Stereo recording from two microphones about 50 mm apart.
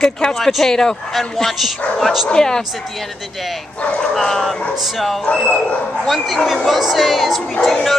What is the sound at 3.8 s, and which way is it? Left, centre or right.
Speech, centre.